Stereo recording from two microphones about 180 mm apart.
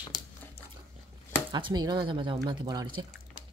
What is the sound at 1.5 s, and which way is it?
Speech, 25° right (ahead or behind).